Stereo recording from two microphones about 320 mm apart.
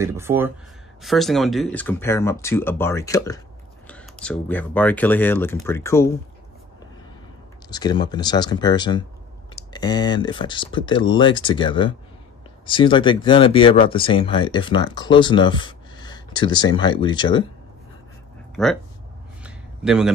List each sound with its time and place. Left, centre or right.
0.0 s speech: centre
7.7 s speech: centre
18.6 s speech: centre
19.4 s a sound: centre